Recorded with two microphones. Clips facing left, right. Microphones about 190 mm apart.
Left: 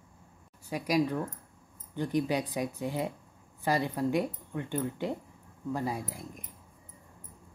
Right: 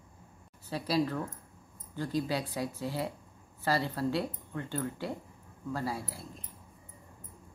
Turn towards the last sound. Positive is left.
turn(degrees=15)  # may be behind; listen again after turning